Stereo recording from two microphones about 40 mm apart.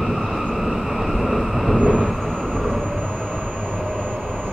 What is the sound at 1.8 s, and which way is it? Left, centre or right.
Vehicle, left.